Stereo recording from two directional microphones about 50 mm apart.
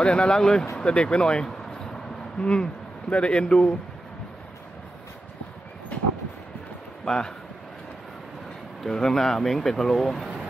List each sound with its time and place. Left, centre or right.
0.0 s speech: centre
7.1 s speech: centre
8.8 s speech: centre